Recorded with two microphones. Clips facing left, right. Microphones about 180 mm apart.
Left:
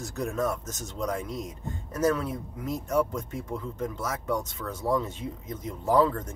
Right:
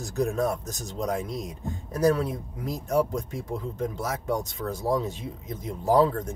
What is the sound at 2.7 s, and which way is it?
Speech, 35° right (ahead or behind).